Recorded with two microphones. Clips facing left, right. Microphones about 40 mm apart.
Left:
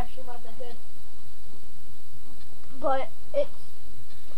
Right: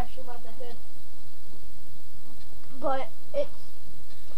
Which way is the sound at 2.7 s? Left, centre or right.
Centre.